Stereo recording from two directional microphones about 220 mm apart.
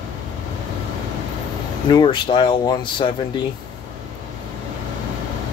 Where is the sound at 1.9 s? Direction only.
20° left (ahead or behind).